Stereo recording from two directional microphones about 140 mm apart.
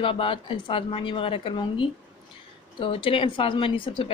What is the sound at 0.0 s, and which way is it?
Speech, 40° left (ahead or behind).